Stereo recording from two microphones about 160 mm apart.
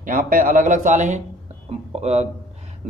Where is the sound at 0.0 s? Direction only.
55° right (ahead or behind).